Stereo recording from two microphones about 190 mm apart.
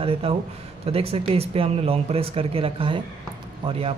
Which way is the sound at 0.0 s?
30° right (ahead or behind).